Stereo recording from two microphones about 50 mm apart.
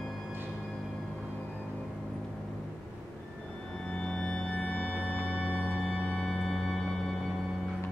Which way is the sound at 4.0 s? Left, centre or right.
Centre.